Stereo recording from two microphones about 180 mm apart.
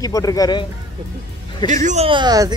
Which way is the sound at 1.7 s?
40° right (ahead or behind).